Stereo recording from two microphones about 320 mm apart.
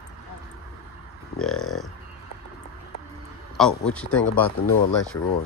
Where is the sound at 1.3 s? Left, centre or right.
Centre.